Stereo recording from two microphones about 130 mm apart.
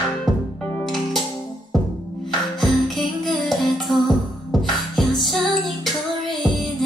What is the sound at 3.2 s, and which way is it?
Music, centre (ahead or behind).